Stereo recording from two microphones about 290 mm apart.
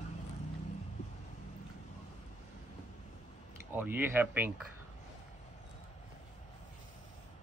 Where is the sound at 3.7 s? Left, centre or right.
Centre.